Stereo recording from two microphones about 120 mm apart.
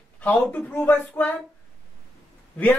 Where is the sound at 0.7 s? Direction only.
15° left (ahead or behind).